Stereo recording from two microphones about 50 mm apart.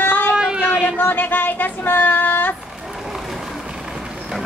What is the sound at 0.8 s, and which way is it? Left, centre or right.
Child singing, left.